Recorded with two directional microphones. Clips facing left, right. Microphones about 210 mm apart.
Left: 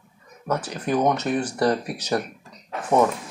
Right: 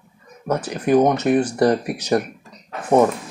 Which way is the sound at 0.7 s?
10° right (ahead or behind).